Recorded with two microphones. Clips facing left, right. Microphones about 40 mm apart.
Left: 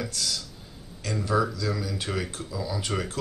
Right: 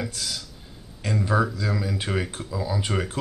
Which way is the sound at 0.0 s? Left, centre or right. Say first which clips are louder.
Even; centre.